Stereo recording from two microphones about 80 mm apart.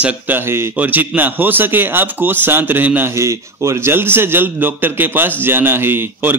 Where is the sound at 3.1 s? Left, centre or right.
Right.